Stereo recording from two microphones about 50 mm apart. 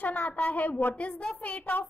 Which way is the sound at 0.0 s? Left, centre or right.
Left.